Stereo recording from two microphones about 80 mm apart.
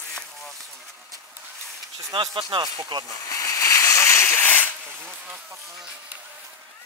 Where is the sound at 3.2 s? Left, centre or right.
Left.